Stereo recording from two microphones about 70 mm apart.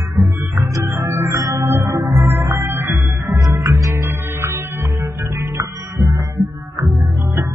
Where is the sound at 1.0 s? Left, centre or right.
Right.